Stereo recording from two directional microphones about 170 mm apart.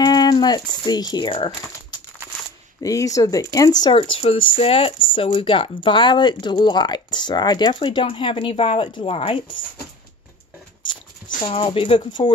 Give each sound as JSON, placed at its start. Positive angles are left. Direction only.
{"t": 0.0, "sound": "speech", "side_deg": 25}
{"t": 11.4, "sound": "speech", "side_deg": 30}